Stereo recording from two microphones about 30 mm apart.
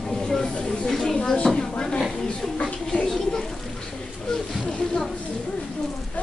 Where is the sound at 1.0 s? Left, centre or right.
Left.